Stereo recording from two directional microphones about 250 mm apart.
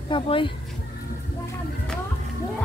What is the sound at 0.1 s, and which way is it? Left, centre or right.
Speech, centre.